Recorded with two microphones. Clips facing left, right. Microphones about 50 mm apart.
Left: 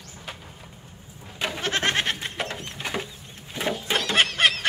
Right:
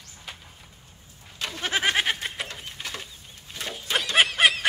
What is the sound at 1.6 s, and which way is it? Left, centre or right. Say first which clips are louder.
Goat: right 1 dB; centre.